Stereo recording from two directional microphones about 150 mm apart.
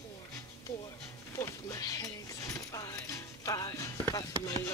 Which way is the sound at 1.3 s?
20° left (ahead or behind).